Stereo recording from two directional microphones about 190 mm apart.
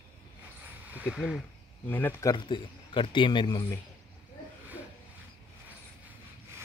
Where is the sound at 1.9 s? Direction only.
15° left (ahead or behind).